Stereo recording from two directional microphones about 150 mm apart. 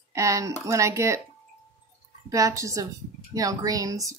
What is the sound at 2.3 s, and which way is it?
A woman's voice, 20° right (ahead or behind).